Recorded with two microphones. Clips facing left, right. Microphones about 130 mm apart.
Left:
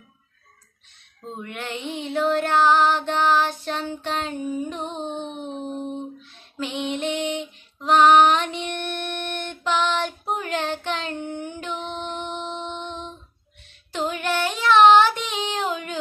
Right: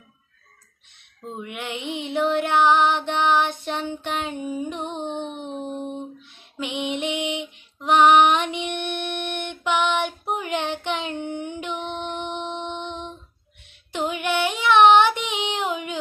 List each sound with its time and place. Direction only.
1.3 s female singing: 10° right (ahead or behind)
9.3 s child singing: 15° right (ahead or behind)